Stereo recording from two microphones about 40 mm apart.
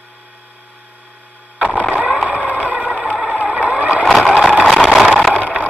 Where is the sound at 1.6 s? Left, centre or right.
Right.